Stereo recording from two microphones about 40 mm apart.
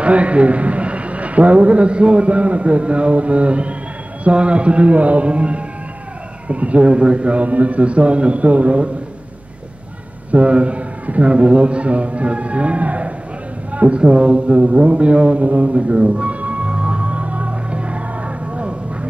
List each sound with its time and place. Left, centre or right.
0.0 s a man's voice: right
10.3 s a man's voice: right
13.7 s a sound: right
18.5 s music: right